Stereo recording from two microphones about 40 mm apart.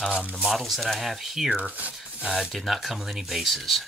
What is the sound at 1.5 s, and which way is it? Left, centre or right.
Speech, right.